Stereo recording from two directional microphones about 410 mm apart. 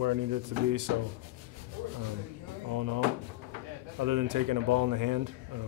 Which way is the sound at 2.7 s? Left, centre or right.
Right.